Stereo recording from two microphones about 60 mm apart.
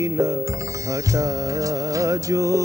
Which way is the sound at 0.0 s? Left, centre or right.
Right.